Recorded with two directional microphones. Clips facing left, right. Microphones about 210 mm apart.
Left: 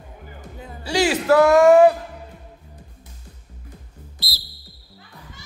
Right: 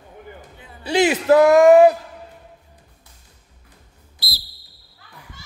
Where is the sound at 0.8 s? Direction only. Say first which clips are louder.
Right 2 dB; 20° right (ahead or behind).